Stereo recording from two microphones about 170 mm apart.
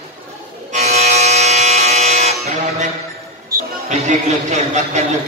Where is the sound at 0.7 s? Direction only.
40° right (ahead or behind).